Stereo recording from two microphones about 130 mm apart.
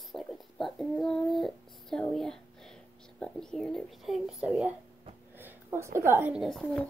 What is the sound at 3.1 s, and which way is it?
Speech, 5° left (ahead or behind).